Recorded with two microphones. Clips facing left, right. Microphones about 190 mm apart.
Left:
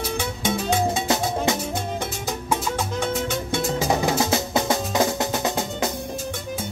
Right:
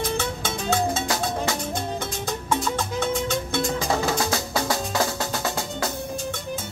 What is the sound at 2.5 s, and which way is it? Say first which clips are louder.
Music: even; 5° left (ahead or behind).